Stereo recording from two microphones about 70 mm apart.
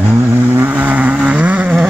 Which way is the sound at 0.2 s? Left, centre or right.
Right.